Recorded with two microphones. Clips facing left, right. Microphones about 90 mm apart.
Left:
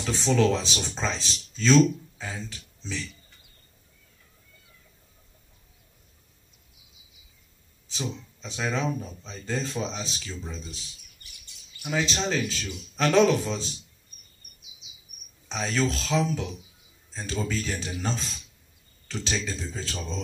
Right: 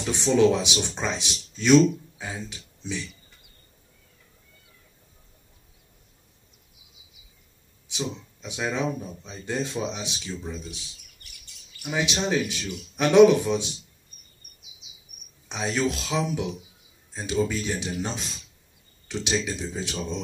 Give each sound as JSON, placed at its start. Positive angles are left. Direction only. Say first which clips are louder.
{"t": 0.0, "sound": "speech", "louder": "right 3 dB", "side_deg": -20}
{"t": 7.9, "sound": "speech", "louder": "right 2 dB", "side_deg": -15}
{"t": 11.9, "sound": "speech", "louder": "right 2 dB", "side_deg": -15}
{"t": 15.4, "sound": "speech", "louder": "right 1 dB", "side_deg": -15}